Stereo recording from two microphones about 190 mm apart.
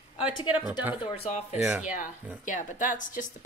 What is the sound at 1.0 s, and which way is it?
Speech, 35° left (ahead or behind).